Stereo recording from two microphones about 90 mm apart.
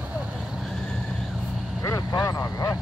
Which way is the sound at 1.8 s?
40° left (ahead or behind).